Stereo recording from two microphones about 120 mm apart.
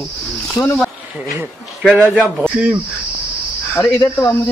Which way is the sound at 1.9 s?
10° right (ahead or behind).